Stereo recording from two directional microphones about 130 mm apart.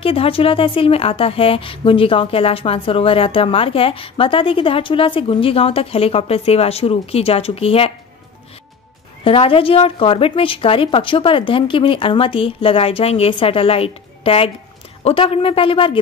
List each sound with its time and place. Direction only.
0.0 s speech: 45° left (ahead or behind)
9.2 s speech: 45° left (ahead or behind)